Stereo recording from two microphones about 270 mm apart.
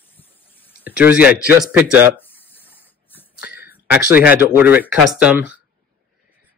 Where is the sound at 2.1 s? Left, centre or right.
Centre.